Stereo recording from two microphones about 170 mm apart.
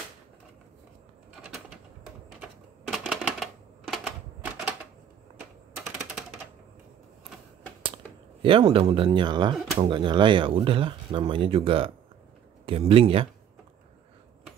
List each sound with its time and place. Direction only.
2.4 s typewriter: 5° right (ahead or behind)
8.4 s speech: 30° right (ahead or behind)